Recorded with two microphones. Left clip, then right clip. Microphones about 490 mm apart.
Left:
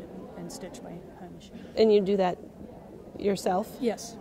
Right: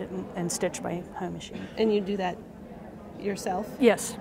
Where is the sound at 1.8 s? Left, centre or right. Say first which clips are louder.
Left 5 dB; left.